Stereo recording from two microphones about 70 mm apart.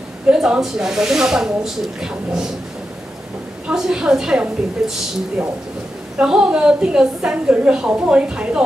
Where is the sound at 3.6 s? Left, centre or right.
Centre.